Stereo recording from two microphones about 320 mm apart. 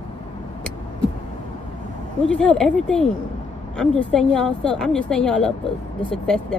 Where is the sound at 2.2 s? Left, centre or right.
Centre.